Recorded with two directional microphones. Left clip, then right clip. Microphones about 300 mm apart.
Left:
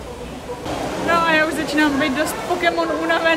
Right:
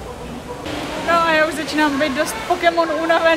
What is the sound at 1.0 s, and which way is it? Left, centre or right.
Speech, centre.